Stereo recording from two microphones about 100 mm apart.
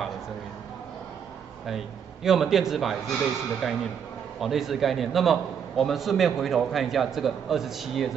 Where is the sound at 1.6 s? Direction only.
5° right (ahead or behind).